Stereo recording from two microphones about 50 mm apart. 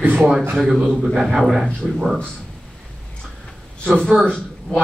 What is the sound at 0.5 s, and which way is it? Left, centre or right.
Speech, centre.